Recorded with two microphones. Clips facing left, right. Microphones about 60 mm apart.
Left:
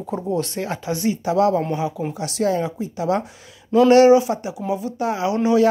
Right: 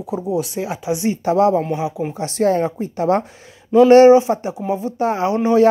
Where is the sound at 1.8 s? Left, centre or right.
Centre.